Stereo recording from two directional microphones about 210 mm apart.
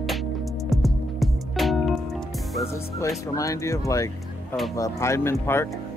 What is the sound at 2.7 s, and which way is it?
Speech, 15° left (ahead or behind).